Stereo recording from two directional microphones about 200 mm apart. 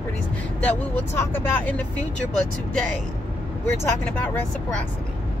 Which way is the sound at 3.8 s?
10° left (ahead or behind).